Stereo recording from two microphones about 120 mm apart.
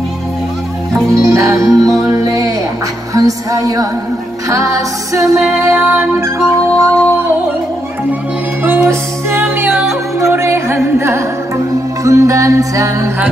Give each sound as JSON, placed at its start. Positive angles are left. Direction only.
{"t": 1.1, "sound": "music", "side_deg": -25}
{"t": 8.6, "sound": "music", "side_deg": -20}
{"t": 9.7, "sound": "music", "side_deg": -5}
{"t": 10.1, "sound": "music", "side_deg": -20}